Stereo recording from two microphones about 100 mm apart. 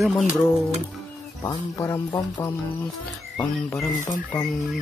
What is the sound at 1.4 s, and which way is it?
Speech, 35° left (ahead or behind).